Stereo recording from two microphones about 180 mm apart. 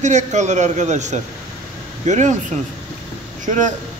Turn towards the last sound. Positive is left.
turn(degrees=-45)  # may be behind; listen again after turning